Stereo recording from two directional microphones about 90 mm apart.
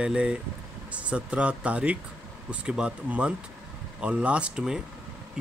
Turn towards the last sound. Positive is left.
turn(degrees=-10)  # may be behind; listen again after turning